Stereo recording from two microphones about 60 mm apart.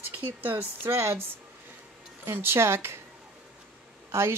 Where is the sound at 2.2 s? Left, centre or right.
Right.